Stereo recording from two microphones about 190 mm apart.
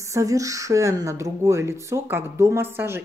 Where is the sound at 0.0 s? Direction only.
15° right (ahead or behind).